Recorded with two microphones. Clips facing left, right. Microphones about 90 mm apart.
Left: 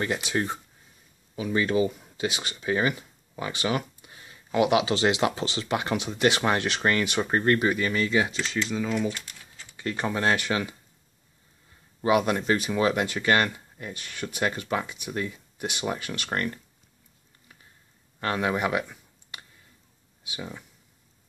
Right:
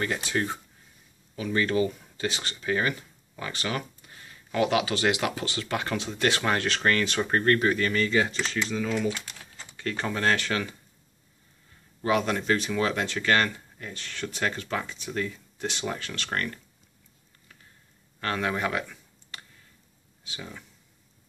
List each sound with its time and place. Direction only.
0.0 s speech: 15° left (ahead or behind)
12.0 s speech: 15° left (ahead or behind)
18.2 s a sound: 15° left (ahead or behind)
20.2 s speech: 15° left (ahead or behind)